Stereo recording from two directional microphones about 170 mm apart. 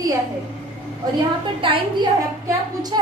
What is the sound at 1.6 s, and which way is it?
A woman's voice, 30° right (ahead or behind).